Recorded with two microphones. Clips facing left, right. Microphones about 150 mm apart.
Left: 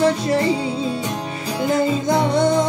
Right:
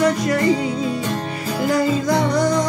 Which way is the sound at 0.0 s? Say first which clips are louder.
Even; 30° left (ahead or behind).